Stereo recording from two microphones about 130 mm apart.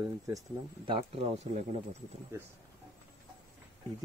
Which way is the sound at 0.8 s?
45° right (ahead or behind).